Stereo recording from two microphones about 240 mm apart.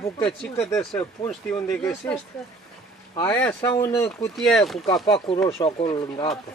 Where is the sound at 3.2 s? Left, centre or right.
Centre.